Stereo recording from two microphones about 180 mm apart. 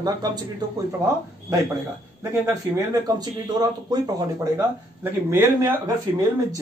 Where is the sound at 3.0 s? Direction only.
20° right (ahead or behind).